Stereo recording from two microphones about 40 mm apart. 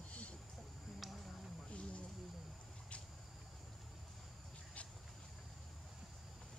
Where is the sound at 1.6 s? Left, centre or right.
Left.